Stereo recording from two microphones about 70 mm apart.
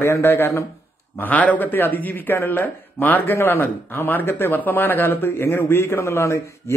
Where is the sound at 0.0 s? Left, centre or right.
Left.